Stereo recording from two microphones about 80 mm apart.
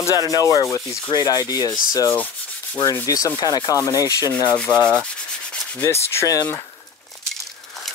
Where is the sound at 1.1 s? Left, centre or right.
Left.